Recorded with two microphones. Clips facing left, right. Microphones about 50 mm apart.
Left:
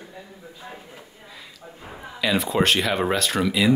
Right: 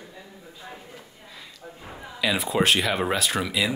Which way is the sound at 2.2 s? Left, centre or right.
Centre.